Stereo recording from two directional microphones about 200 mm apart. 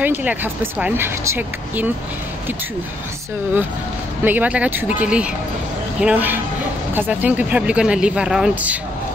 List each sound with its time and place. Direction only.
0.0 s speech: 10° right (ahead or behind)
4.2 s speech: 10° right (ahead or behind)